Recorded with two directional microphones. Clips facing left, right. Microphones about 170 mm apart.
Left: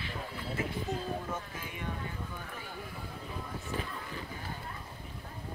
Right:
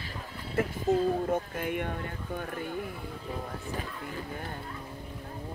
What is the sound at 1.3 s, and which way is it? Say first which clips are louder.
Speech: right 10 dB; 60° right (ahead or behind).